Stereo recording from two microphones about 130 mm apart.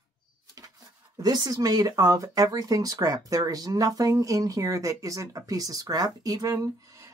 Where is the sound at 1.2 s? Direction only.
30° right (ahead or behind).